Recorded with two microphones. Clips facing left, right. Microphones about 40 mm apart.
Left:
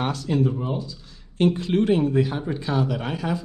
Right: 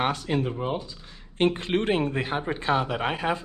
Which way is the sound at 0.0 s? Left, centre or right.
Right.